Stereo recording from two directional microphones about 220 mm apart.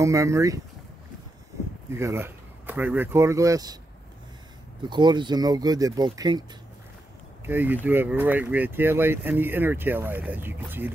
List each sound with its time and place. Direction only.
0.0 s speech: 15° right (ahead or behind)
1.9 s speech: 10° right (ahead or behind)
4.8 s speech: 20° right (ahead or behind)
7.4 s speech: 10° right (ahead or behind)